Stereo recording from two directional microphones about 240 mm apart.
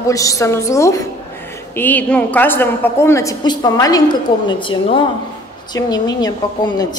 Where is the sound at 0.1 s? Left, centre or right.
Centre.